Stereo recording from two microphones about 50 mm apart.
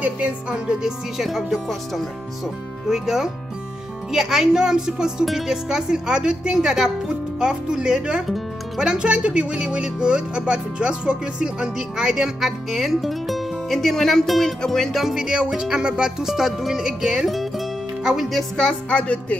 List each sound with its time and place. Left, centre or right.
0.0 s speech: right
1.1 s speech: centre
15.0 s speech: centre
17.3 s music: centre
18.6 s music: left